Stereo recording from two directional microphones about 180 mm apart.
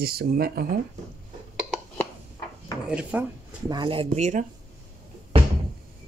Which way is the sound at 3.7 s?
25° right (ahead or behind).